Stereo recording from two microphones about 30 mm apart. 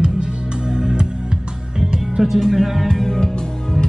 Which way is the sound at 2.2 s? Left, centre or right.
Centre.